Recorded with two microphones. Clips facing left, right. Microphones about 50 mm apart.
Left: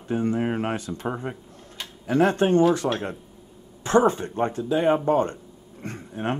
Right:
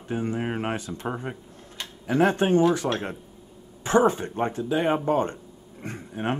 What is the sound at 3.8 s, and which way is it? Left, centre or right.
Speech, centre.